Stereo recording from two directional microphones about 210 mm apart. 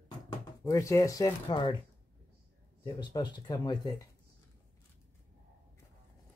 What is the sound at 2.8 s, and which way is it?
Speech, 20° left (ahead or behind).